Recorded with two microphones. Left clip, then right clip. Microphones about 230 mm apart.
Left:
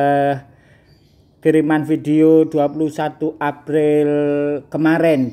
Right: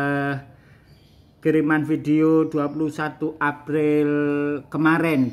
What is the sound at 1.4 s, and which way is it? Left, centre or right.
Speech, centre.